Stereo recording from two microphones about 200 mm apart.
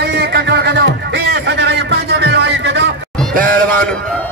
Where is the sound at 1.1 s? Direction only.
60° right (ahead or behind).